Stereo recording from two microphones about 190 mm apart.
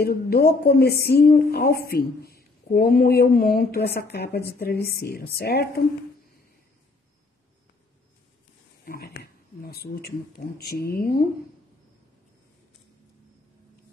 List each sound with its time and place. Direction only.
0.0 s a woman's voice: 55° left (ahead or behind)
8.8 s speech: 55° left (ahead or behind)